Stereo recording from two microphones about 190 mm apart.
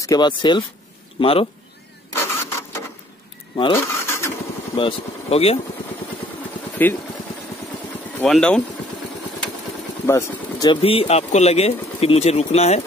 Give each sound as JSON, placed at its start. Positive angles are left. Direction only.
{"t": 0.0, "sound": "speech", "side_deg": 20}
{"t": 2.1, "sound": "printer", "side_deg": 15}
{"t": 3.5, "sound": "speech", "side_deg": 25}
{"t": 3.8, "sound": "vehicle", "side_deg": 15}
{"t": 4.7, "sound": "speech", "side_deg": 30}
{"t": 6.8, "sound": "speech", "side_deg": 10}
{"t": 8.2, "sound": "speech", "side_deg": 5}
{"t": 10.0, "sound": "speech", "side_deg": 15}
{"t": 10.8, "sound": "speech", "side_deg": 30}